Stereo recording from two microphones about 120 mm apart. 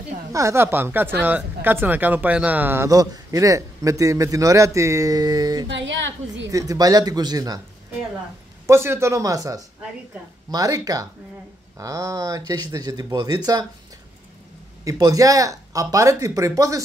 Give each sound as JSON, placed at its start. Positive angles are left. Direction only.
{"t": 0.3, "sound": "speech", "side_deg": -25}
{"t": 8.6, "sound": "speech", "side_deg": -20}
{"t": 14.9, "sound": "speech", "side_deg": -30}